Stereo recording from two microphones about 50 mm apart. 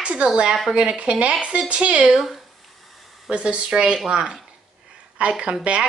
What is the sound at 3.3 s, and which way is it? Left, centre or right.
Speech, right.